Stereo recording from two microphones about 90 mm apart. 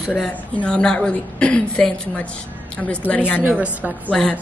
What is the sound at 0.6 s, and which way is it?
Speech, 10° left (ahead or behind).